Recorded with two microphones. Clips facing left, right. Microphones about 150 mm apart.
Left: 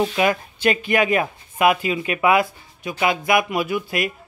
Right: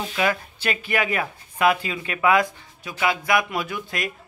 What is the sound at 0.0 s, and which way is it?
Speech, 20° left (ahead or behind).